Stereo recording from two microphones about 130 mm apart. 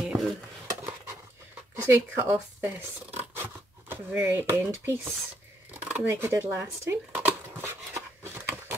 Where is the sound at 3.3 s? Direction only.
15° right (ahead or behind).